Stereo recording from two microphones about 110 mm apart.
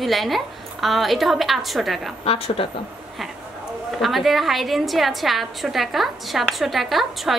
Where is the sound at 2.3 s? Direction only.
60° left (ahead or behind).